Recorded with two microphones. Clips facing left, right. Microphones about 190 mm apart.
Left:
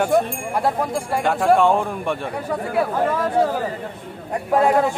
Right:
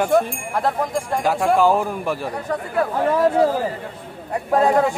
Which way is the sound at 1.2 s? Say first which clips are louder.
Left 1 dB; centre (ahead or behind).